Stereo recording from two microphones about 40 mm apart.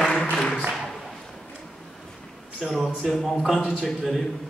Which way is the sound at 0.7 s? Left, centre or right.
Centre.